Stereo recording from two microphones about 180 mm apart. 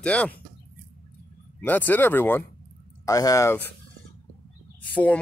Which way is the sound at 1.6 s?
10° left (ahead or behind).